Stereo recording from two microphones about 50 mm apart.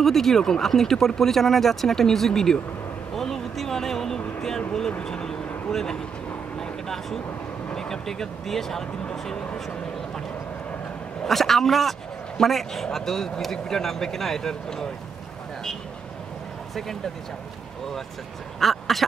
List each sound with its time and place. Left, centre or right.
0.0 s speech: centre
4.4 s a sound: centre
5.0 s vehicle: centre
5.7 s speech: centre
6.6 s vehicle: centre
7.7 s speech: centre
11.2 s speech: centre
18.6 s quack: centre